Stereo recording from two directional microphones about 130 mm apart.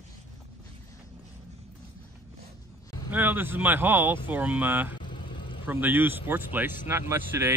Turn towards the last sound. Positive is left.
turn(degrees=-20)  # may be behind; listen again after turning